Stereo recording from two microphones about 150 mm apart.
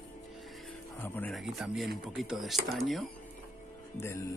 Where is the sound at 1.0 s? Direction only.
15° left (ahead or behind).